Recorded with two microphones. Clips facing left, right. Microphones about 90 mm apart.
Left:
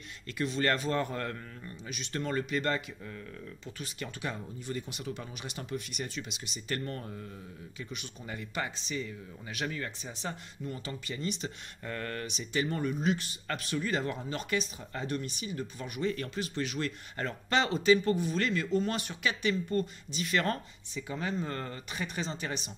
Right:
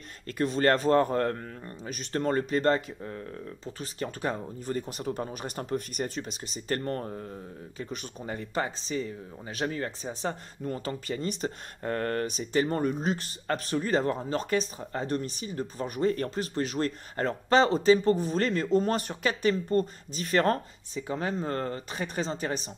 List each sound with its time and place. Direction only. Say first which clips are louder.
0.3 s speech: right 6 dB; 40° right (ahead or behind)